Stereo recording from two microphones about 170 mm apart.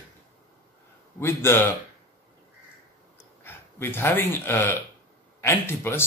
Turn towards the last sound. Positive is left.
turn(degrees=15)  # may be behind; listen again after turning